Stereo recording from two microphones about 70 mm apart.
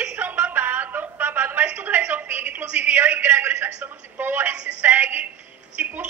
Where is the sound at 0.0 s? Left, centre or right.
Right.